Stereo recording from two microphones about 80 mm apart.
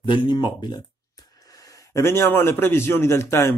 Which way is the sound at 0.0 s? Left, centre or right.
Left.